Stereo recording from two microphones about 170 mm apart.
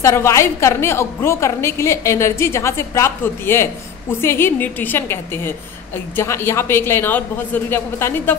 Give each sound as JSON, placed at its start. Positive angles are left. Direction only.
{"t": 0.0, "sound": "a woman's voice", "side_deg": 15}